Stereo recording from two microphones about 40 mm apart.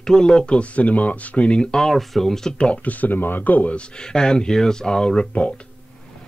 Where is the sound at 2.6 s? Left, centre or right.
Left.